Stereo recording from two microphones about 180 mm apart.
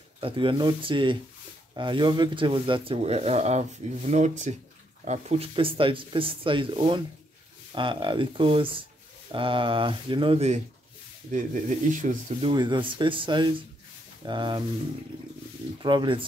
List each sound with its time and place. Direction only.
0.2 s speech: 30° right (ahead or behind)
11.3 s speech: 45° right (ahead or behind)
12.4 s speech: 25° right (ahead or behind)
15.8 s speech: 25° right (ahead or behind)